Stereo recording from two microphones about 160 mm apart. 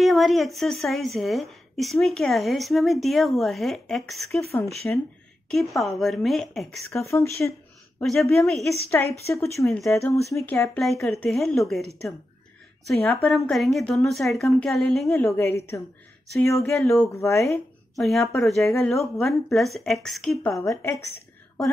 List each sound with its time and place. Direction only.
0.0 s a woman's voice: centre (ahead or behind)
4.8 s a woman's voice: 10° left (ahead or behind)
5.5 s a woman's voice: centre (ahead or behind)
7.0 s a woman's voice: 20° left (ahead or behind)
8.0 s a woman's voice: centre (ahead or behind)
9.0 s a woman's voice: 10° left (ahead or behind)
9.7 s a woman's voice: centre (ahead or behind)
10.3 s a woman's voice: 15° left (ahead or behind)
10.8 s a woman's voice: centre (ahead or behind)
12.9 s a woman's voice: 15° left (ahead or behind)
13.3 s a woman's voice: centre (ahead or behind)
15.0 s a woman's voice: 15° left (ahead or behind)
17.4 s a woman's voice: centre (ahead or behind)
20.5 s a woman's voice: 20° left (ahead or behind)